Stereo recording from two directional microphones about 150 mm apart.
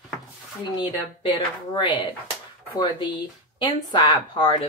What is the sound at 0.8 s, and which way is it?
Speech, 30° left (ahead or behind).